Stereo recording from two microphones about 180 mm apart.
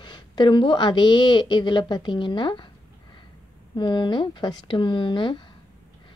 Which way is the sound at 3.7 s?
25° left (ahead or behind).